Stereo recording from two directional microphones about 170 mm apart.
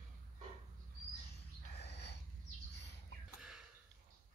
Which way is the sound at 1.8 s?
75° left (ahead or behind).